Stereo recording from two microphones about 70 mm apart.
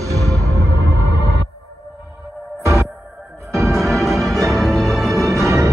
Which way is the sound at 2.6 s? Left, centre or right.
Right.